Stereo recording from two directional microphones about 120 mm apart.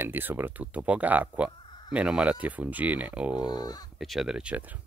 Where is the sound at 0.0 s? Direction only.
15° right (ahead or behind).